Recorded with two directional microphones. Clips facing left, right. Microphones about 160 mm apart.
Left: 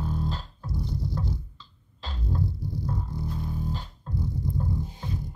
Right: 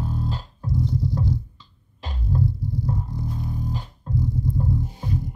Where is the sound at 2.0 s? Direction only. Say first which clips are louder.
Right 4 dB; 15° right (ahead or behind).